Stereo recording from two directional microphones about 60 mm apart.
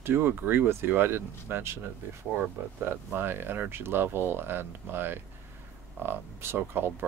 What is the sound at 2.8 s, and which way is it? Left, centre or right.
Speech, right.